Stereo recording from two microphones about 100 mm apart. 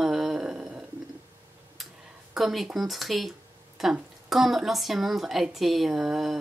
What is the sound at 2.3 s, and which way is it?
A woman's voice, centre (ahead or behind).